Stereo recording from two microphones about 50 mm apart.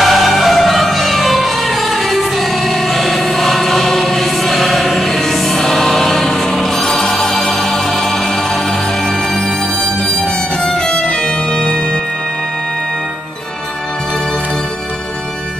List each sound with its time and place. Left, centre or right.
0.0 s music: centre
10.0 s violin: centre